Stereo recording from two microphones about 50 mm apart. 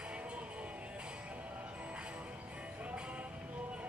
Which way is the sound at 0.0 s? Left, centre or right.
Right.